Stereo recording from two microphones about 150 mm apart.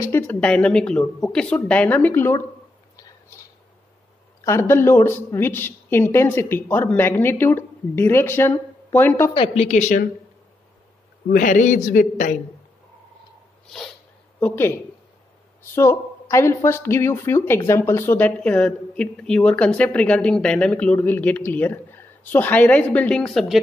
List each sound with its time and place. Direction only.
0.0 s speech: 15° left (ahead or behind)
4.5 s speech: 15° left (ahead or behind)
9.3 s speech: 40° left (ahead or behind); by 10.0 s 55° left (ahead or behind)
11.2 s a man's voice: 65° left (ahead or behind)
14.4 s speech: 15° left (ahead or behind)